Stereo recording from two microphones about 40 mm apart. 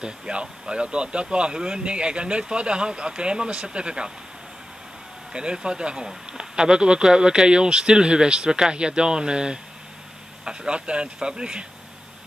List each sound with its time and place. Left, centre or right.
0.0 s speech: right
5.3 s speech: right